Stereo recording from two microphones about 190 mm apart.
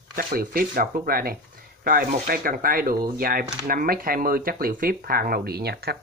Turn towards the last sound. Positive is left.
turn(degrees=-55)  # may be behind; listen again after turning